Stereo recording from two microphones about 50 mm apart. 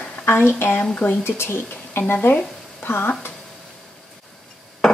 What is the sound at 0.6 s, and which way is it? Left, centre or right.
Speech, left.